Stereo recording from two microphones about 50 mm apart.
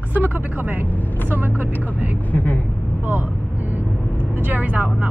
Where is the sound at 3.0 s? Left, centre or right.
Right.